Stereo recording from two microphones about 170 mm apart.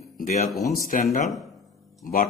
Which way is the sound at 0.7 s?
55° left (ahead or behind).